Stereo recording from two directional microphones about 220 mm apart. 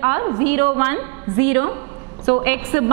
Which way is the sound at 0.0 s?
15° right (ahead or behind).